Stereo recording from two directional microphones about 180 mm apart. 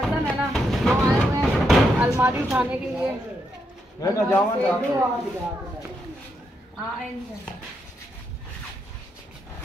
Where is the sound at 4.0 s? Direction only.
15° left (ahead or behind).